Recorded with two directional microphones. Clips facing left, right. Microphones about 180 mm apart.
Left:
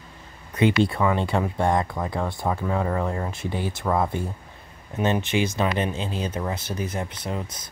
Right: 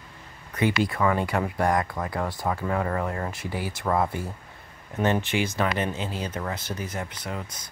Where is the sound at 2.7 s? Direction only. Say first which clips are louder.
Left 1 dB; 15° left (ahead or behind).